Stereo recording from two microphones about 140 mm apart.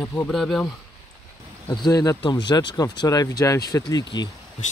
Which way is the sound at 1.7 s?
25° left (ahead or behind).